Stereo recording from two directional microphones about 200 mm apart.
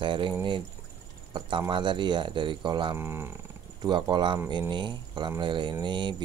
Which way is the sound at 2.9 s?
10° right (ahead or behind).